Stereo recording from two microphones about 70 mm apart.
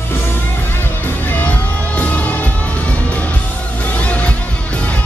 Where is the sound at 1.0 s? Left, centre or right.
Left.